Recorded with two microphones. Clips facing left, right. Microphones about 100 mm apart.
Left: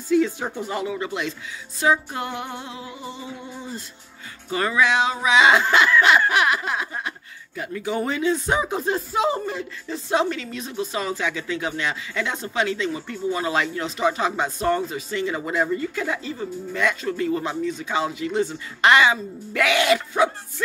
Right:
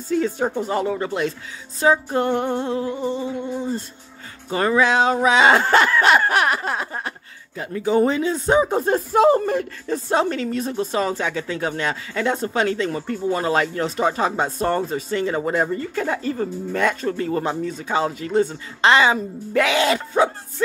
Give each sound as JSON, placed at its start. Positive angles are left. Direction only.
{"t": 0.1, "sound": "speech", "side_deg": -40}